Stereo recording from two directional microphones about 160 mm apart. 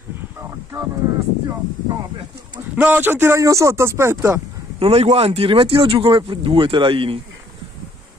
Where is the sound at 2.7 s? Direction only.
10° right (ahead or behind).